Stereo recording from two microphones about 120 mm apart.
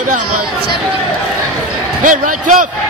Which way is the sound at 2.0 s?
90° right.